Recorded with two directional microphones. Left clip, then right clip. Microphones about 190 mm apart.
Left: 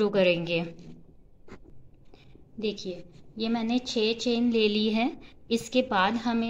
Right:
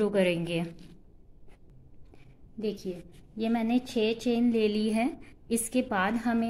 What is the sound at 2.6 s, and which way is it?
A woman's voice, 15° right (ahead or behind).